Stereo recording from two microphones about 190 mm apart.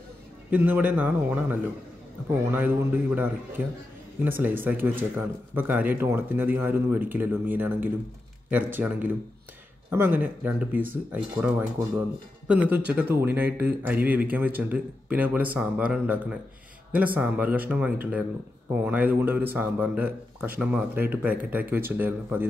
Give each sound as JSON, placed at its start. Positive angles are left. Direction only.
{"t": 0.5, "sound": "speech", "side_deg": -10}